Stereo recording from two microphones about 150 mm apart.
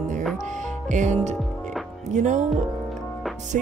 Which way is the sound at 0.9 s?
55° right (ahead or behind).